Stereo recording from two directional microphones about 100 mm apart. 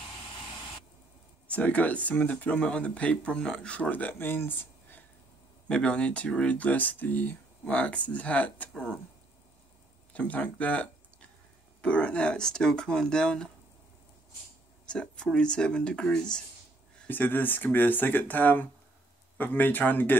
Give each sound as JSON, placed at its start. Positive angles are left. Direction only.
{"t": 1.5, "sound": "speech", "side_deg": 15}
{"t": 5.7, "sound": "speech", "side_deg": 10}
{"t": 10.1, "sound": "speech", "side_deg": 15}
{"t": 14.9, "sound": "speech", "side_deg": 10}
{"t": 17.1, "sound": "speech", "side_deg": 20}